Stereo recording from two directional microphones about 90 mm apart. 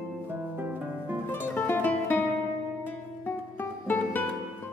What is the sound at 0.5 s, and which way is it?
Music, 20° right (ahead or behind).